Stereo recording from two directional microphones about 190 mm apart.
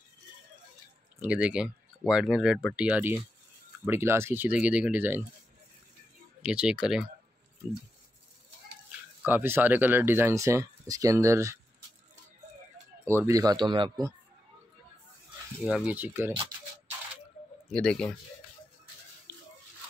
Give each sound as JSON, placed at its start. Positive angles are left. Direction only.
{"t": 1.2, "sound": "speech", "side_deg": -5}
{"t": 6.4, "sound": "speech", "side_deg": -5}
{"t": 9.2, "sound": "speech", "side_deg": -10}
{"t": 13.0, "sound": "speech", "side_deg": -15}
{"t": 15.6, "sound": "speech", "side_deg": -5}
{"t": 17.6, "sound": "speech", "side_deg": 5}
{"t": 19.3, "sound": "a sound", "side_deg": -25}